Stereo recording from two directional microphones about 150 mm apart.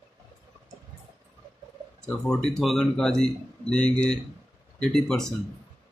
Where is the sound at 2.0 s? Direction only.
5° left (ahead or behind).